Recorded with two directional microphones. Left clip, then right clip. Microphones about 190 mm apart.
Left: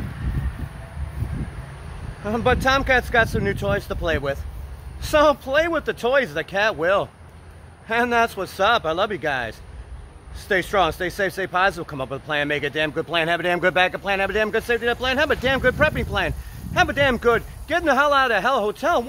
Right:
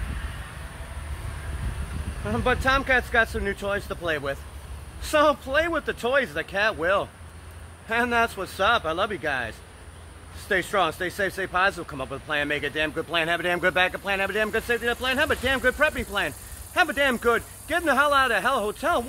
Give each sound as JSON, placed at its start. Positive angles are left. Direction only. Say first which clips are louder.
{"t": 2.2, "sound": "speech", "louder": "left 4 dB", "side_deg": 55}